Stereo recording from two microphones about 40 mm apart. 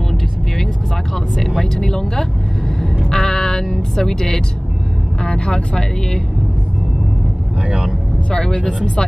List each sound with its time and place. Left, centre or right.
1.6 s speech: centre
3.1 s music: centre
5.2 s speech: left
7.6 s speech: right
8.3 s speech: left